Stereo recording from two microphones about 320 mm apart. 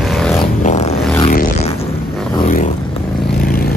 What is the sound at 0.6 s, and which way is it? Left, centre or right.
Vehicle, centre.